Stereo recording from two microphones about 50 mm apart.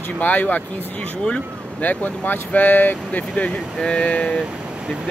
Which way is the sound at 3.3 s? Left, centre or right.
Left.